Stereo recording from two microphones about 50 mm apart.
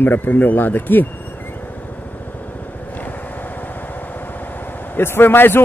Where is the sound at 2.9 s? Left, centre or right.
Left.